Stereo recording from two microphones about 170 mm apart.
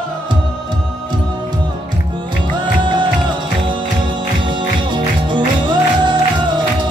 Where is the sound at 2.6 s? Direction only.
25° right (ahead or behind).